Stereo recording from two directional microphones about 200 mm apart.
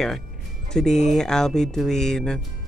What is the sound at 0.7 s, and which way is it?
Speech, 5° left (ahead or behind).